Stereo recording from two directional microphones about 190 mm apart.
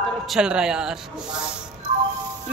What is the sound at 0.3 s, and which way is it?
Speech, 5° right (ahead or behind).